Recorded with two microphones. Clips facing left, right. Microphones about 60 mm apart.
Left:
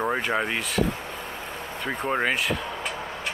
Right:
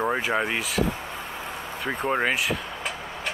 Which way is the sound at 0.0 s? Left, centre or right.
Centre.